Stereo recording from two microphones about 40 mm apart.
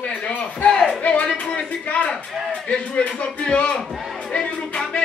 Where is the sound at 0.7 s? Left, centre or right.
Centre.